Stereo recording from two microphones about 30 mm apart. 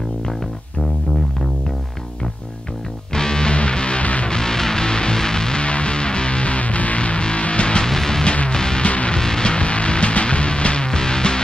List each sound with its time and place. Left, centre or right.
3.1 s music: left
4.0 s music: left
4.3 s music: left
5.6 s music: left
7.8 s music: centre
8.8 s music: left
9.1 s music: left
10.9 s music: left